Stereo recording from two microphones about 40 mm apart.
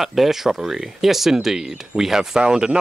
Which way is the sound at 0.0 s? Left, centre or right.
Centre.